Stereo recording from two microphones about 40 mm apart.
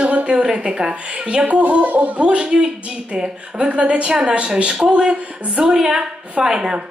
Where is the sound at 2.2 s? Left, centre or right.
Right.